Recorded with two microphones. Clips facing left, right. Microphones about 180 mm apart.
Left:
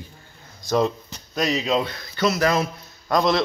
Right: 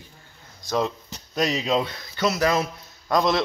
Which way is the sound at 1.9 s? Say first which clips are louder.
Left 2 dB; 15° right (ahead or behind).